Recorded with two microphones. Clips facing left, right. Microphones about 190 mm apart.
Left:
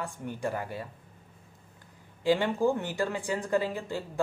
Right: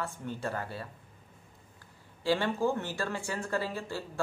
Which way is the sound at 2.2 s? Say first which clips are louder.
Left 3 dB; 15° left (ahead or behind).